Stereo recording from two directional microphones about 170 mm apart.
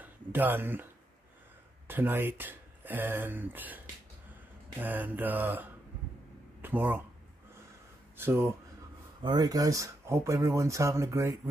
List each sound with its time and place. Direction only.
0.0 s a sound: 10° right (ahead or behind)
1.9 s speech: 10° right (ahead or behind)
8.2 s speech: 15° right (ahead or behind)
9.2 s speech: 25° right (ahead or behind)